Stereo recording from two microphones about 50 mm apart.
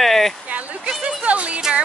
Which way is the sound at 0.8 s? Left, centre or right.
Right.